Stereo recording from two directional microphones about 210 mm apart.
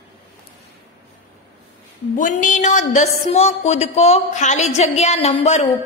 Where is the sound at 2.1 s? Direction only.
40° left (ahead or behind).